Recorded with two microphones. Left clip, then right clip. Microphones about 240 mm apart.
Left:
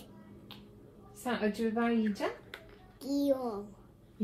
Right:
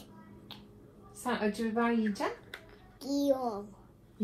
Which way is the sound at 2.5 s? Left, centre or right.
Centre.